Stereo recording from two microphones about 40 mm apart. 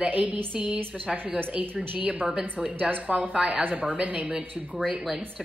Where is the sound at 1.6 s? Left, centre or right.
Right.